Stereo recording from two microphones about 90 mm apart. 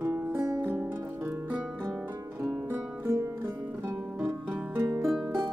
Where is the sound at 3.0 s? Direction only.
35° right (ahead or behind).